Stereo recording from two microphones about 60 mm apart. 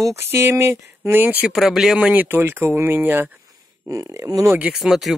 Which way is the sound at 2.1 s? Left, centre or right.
Right.